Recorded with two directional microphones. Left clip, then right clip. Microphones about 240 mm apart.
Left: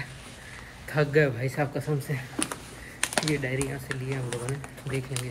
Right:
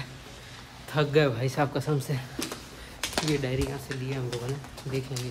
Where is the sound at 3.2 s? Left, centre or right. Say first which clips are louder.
Even; centre.